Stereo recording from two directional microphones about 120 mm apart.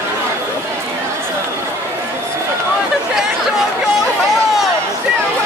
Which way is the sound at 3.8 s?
5° right (ahead or behind).